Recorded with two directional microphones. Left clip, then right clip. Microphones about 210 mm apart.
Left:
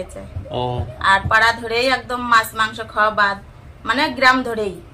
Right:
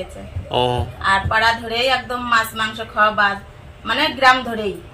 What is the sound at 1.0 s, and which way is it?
A woman's voice, 25° left (ahead or behind).